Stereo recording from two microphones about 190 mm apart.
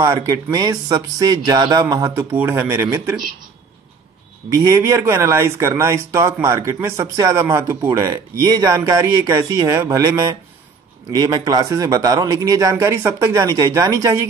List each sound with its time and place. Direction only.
0.0 s speech: 20° right (ahead or behind)
4.6 s speech: 15° right (ahead or behind)